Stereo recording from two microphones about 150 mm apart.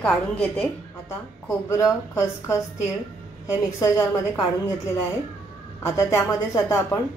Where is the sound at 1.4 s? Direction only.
20° left (ahead or behind).